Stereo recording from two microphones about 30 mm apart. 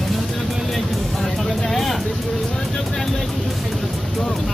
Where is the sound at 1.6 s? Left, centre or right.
Centre.